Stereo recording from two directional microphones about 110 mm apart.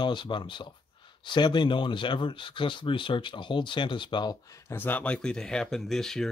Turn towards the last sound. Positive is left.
turn(degrees=5)  # may be behind; listen again after turning